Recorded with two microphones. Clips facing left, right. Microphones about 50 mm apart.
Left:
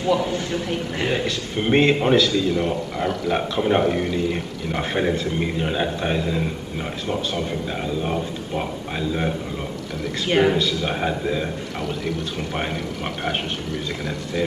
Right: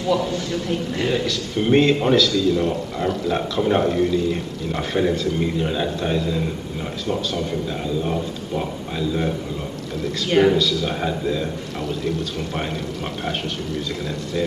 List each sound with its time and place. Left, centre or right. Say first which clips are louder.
0.0 s a man's voice: even; left
3.9 s a man's voice: right 3 dB; left